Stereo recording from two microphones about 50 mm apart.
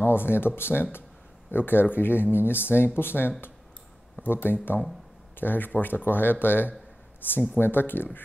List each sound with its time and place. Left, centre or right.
0.0 s speech: left